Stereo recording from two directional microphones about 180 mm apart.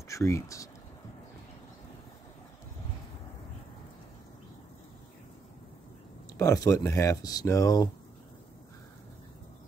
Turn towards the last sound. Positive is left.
turn(degrees=20)  # may be behind; listen again after turning